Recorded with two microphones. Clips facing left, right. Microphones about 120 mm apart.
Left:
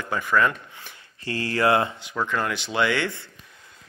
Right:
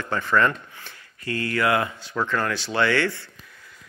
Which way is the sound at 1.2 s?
30° left (ahead or behind).